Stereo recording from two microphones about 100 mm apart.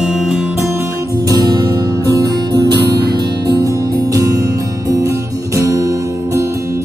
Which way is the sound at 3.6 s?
35° right (ahead or behind).